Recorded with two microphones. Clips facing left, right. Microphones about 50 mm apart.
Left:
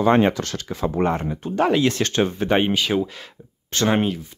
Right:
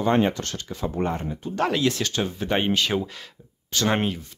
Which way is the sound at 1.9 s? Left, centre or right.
Left.